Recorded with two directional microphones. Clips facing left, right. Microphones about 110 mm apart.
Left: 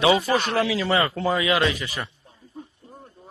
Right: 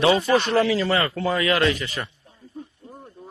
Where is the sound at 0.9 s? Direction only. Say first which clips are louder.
Left 1 dB; 20° left (ahead or behind).